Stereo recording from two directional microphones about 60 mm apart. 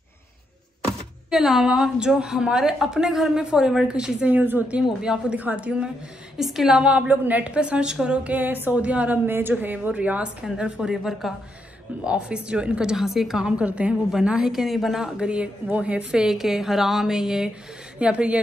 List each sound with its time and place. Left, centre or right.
1.3 s a woman's voice: centre
4.3 s a woman's voice: right
4.8 s a woman's voice: centre
5.4 s a woman's voice: right
6.3 s a woman's voice: centre
6.8 s a woman's voice: right
10.4 s a woman's voice: centre
12.0 s a woman's voice: centre
15.1 s a woman's voice: centre
16.1 s a woman's voice: centre